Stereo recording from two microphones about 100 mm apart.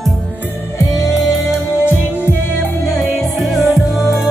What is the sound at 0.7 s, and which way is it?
Music, 35° left (ahead or behind).